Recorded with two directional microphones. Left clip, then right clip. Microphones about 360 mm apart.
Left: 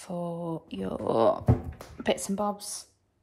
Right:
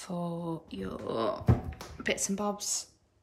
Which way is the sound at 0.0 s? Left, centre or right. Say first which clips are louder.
Left 3 dB; centre.